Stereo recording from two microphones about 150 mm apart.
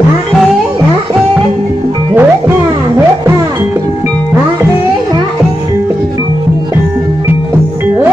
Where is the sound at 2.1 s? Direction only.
15° right (ahead or behind).